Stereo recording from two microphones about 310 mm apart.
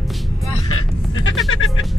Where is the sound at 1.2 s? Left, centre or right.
Left.